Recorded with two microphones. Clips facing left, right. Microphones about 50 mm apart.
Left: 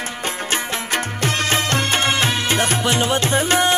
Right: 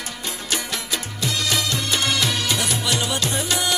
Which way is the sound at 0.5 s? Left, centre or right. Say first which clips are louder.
Left 3 dB; left.